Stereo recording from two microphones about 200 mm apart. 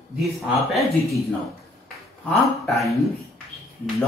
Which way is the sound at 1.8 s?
Centre (ahead or behind).